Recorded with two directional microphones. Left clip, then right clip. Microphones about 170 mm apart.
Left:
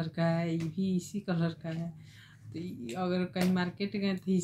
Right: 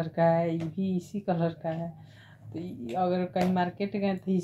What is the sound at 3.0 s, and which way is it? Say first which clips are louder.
Speech: right 6 dB; 30° left (ahead or behind).